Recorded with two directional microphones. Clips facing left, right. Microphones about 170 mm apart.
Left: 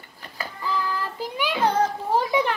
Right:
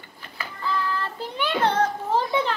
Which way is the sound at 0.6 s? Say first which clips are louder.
Even; 10° left (ahead or behind).